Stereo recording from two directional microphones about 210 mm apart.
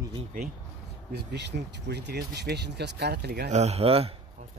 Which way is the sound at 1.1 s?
50° right (ahead or behind).